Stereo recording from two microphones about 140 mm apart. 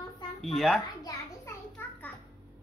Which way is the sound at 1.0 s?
25° left (ahead or behind).